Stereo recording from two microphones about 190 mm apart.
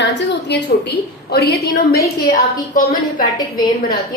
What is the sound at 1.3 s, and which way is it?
Speech, 55° left (ahead or behind).